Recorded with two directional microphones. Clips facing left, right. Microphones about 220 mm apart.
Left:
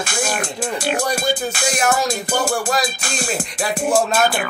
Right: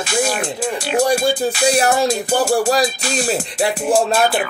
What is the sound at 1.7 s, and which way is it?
Music, 30° right (ahead or behind).